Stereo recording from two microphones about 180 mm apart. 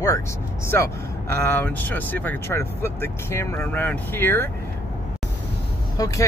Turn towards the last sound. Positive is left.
turn(degrees=20)  # may be behind; listen again after turning